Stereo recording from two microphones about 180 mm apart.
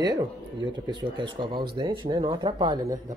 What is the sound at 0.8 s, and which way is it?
Speech, 25° right (ahead or behind).